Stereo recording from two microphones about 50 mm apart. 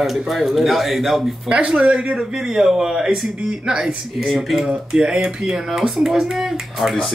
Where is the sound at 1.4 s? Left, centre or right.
Right.